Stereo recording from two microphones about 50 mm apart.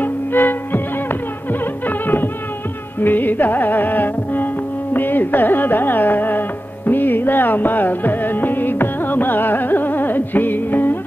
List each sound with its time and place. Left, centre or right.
0.0 s music: left
4.9 s carnatic music: left
6.9 s music: left